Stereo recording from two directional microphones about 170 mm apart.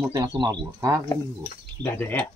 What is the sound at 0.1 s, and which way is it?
Speech, 25° right (ahead or behind).